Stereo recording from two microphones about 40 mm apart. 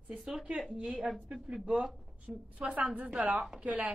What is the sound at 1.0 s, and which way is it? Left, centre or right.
Speech, centre.